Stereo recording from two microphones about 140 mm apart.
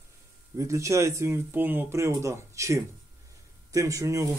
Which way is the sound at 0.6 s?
20° right (ahead or behind).